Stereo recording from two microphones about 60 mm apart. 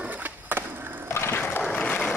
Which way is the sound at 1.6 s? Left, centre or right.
Left.